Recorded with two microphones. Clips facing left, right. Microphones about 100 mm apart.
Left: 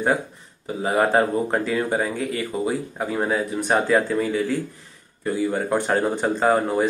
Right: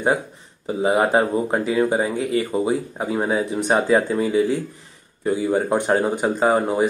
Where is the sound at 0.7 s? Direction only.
20° right (ahead or behind).